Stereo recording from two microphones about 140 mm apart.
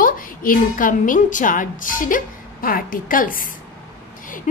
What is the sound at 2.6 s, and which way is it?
Speech, 85° left.